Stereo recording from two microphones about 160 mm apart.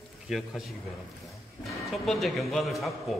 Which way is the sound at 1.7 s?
Centre (ahead or behind).